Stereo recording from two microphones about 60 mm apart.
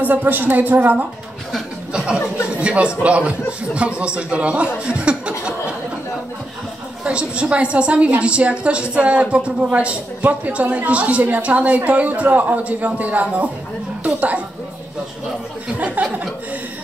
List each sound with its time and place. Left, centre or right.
0.0 s a woman's voice: right
1.9 s chuckle: centre
2.6 s a woman's voice: right
7.1 s a woman's voice: centre
15.8 s a woman's voice: right